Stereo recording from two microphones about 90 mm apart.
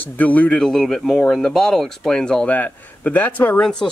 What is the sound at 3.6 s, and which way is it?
Speech, 5° left (ahead or behind).